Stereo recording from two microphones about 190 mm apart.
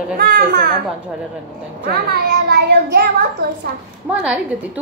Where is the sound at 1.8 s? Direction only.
55° right (ahead or behind).